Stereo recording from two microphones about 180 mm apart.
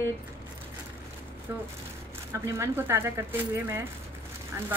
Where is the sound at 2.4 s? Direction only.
15° right (ahead or behind).